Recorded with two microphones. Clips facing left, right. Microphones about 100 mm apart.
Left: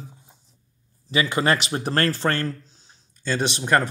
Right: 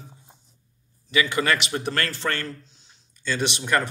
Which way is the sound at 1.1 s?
30° left (ahead or behind).